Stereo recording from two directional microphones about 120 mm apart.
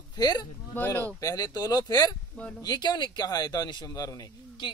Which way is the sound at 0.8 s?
15° left (ahead or behind).